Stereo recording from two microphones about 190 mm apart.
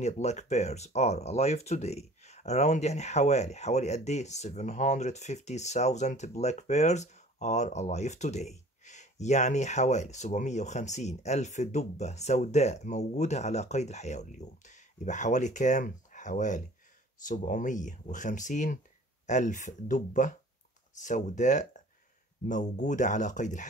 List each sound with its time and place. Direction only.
0.0 s speech: 35° left (ahead or behind)